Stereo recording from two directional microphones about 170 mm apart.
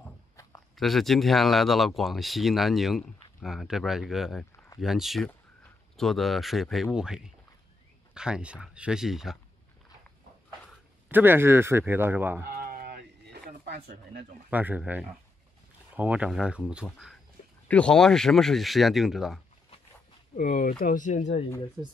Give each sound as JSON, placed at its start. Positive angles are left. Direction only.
{"t": 0.7, "sound": "speech", "side_deg": 0}
{"t": 11.1, "sound": "a man's voice", "side_deg": -10}
{"t": 12.4, "sound": "a sound", "side_deg": -55}
{"t": 14.5, "sound": "a man's voice", "side_deg": -10}
{"t": 20.3, "sound": "speech", "side_deg": 50}
{"t": 21.8, "sound": "a man's voice", "side_deg": -15}